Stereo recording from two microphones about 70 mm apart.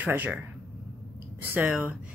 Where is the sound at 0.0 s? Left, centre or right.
Right.